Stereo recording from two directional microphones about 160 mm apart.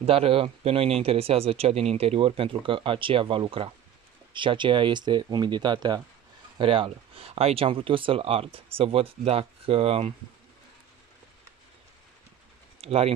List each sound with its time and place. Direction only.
0.0 s speech: 35° right (ahead or behind)
12.8 s speech: 40° right (ahead or behind)